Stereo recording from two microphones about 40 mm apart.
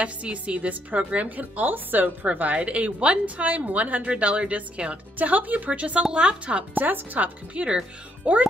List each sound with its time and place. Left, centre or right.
0.0 s speech: right
2.5 s speech: right
4.0 s speech: right
6.7 s speech: right
7.6 s speech: right